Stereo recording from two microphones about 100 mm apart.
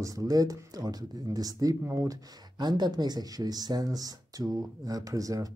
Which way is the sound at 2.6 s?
45° right (ahead or behind).